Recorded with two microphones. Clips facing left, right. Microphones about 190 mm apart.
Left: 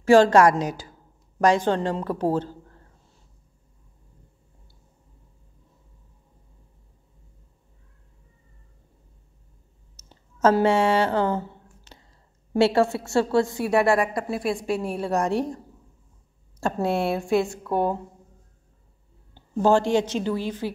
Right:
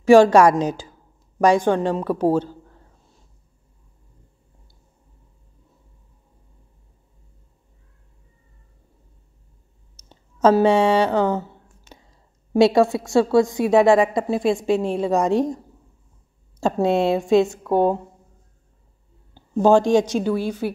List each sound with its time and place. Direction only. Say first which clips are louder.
0.0 s speech: right 3 dB; 15° right (ahead or behind)
9.9 s speech: right 3 dB; 15° right (ahead or behind)
19.3 s a woman's voice: right 4 dB; 15° right (ahead or behind)